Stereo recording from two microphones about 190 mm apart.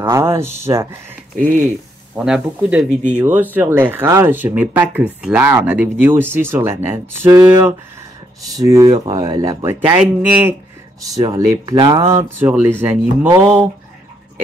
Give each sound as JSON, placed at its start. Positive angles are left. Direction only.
{"t": 0.0, "sound": "speech", "side_deg": -15}
{"t": 2.1, "sound": "speech", "side_deg": -5}
{"t": 11.1, "sound": "speech", "side_deg": -20}